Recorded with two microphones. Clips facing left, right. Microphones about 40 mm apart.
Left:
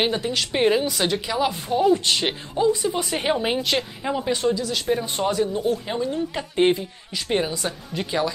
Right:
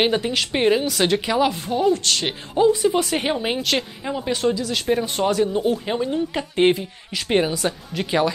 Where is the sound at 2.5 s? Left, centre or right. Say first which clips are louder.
Right 4 dB; centre.